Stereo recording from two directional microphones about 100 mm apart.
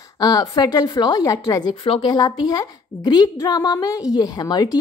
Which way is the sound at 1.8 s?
60° left (ahead or behind).